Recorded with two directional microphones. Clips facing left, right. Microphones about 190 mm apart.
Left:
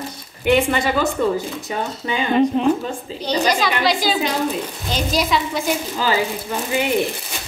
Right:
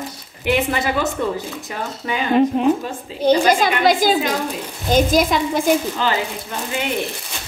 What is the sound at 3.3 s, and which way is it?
A woman's voice, 50° right (ahead or behind).